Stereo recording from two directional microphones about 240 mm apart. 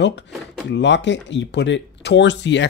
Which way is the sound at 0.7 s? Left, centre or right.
Left.